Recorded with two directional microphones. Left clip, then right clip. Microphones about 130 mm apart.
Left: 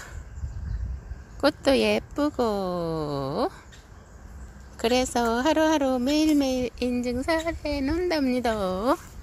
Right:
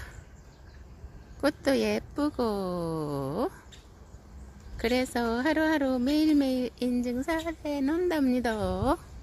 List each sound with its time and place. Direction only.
1.4 s a woman's voice: 5° right (ahead or behind)
4.7 s a woman's voice: 5° right (ahead or behind)
7.6 s a woman's voice: 20° right (ahead or behind)